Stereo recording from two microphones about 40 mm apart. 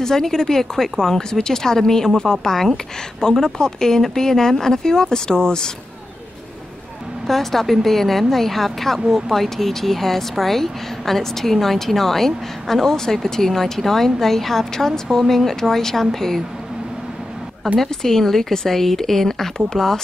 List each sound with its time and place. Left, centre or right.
0.0 s speech: centre
7.2 s a woman's voice: centre
17.8 s speech: centre